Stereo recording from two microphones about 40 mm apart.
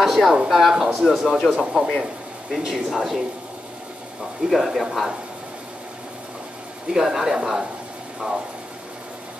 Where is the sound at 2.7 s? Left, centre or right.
Centre.